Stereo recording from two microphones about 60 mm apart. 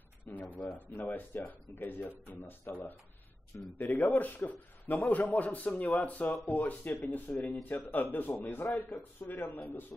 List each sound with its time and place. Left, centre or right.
0.2 s a man's voice: left